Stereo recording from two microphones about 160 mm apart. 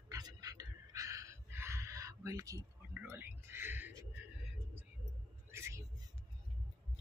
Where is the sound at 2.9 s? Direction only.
10° right (ahead or behind).